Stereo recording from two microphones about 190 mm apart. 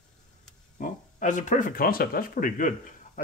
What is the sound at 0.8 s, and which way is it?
Speech, 40° left (ahead or behind).